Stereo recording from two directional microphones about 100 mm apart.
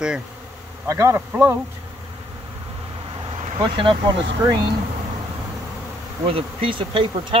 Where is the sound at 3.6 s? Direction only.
55° right (ahead or behind).